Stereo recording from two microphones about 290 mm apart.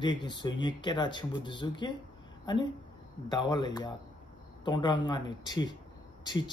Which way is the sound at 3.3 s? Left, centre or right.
Centre.